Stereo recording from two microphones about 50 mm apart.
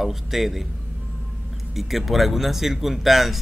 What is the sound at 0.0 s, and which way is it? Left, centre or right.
Speech, centre.